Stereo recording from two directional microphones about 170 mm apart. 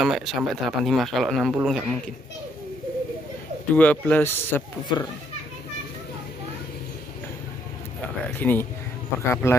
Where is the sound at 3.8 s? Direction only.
10° left (ahead or behind).